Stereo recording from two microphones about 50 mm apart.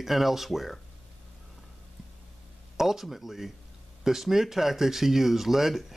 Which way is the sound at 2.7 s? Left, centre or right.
Centre.